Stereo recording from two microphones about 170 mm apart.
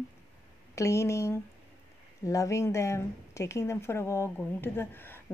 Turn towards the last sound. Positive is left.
turn(degrees=15)  # may be behind; listen again after turning